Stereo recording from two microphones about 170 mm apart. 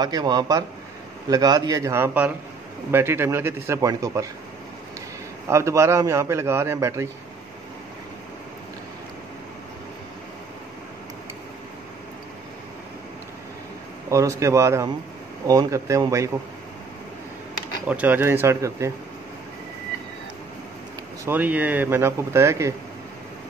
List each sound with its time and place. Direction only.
0.0 s a man's voice: 25° right (ahead or behind)
5.5 s a man's voice: 15° right (ahead or behind)
14.1 s a man's voice: 20° right (ahead or behind)
17.8 s a man's voice: 10° right (ahead or behind)
21.3 s a man's voice: 10° right (ahead or behind)